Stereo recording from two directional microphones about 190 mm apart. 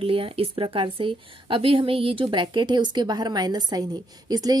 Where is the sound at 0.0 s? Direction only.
30° right (ahead or behind).